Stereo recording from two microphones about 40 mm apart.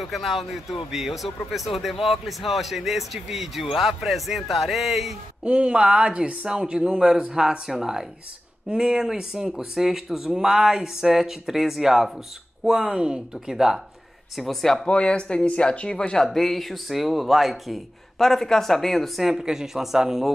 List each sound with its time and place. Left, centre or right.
0.0 s speech: centre
5.4 s speech: right; by 12.1 s centre
12.6 s speech: centre
14.3 s speech: centre
14.9 s speech: left
16.2 s speech: centre
19.3 s speech: centre